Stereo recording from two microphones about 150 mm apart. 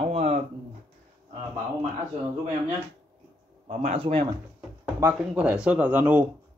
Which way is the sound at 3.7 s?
55° right (ahead or behind).